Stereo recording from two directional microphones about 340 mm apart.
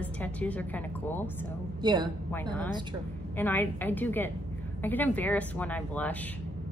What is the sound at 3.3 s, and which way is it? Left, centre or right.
A woman's voice, centre.